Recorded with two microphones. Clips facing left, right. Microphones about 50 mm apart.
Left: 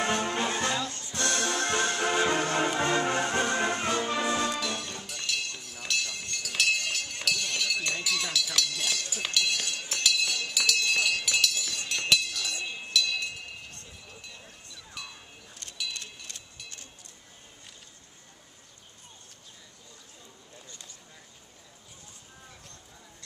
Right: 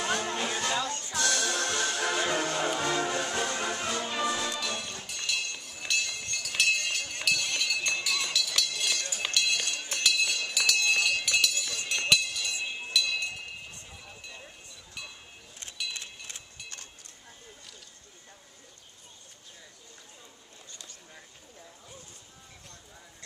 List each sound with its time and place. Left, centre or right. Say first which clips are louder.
0.0 s music: left 2 dB; left
4.6 s music: left 1 dB; centre
11.9 s chink: right 1 dB; centre
15.9 s a sound: even; centre